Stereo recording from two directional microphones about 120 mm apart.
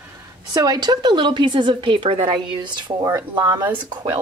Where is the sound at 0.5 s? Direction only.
35° right (ahead or behind).